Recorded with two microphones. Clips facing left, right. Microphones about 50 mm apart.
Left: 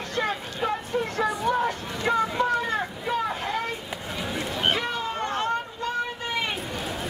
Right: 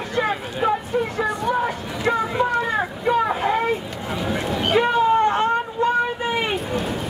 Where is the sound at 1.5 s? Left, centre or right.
Centre.